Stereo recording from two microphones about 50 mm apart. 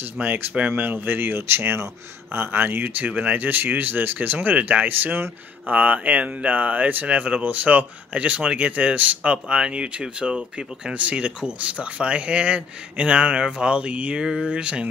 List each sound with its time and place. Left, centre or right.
0.2 s speech: right
3.1 s speech: right
5.7 s speech: right
14.2 s speech: centre
14.5 s speech: right